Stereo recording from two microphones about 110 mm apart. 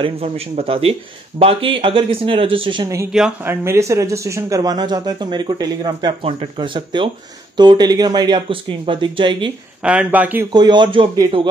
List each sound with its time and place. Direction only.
0.0 s speech: 60° right (ahead or behind)
2.8 s speech: 30° right (ahead or behind)
3.1 s speech: 5° right (ahead or behind)
3.4 s speech: 25° right (ahead or behind); by 9.5 s 45° right (ahead or behind)
9.8 s speech: 15° right (ahead or behind)
10.5 s speech: 40° right (ahead or behind)